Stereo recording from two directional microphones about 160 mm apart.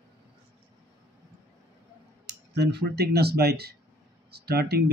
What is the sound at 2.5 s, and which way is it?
Speech, 90° right.